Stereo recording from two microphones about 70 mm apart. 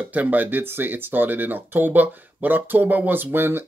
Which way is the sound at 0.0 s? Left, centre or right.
Right.